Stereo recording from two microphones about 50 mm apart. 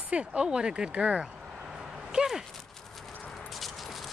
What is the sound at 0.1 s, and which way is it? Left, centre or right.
Speech, right.